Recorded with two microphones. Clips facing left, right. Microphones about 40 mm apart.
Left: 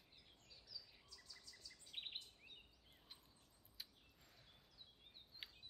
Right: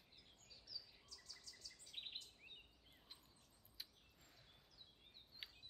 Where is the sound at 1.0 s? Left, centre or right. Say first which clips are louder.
Right 1 dB; centre.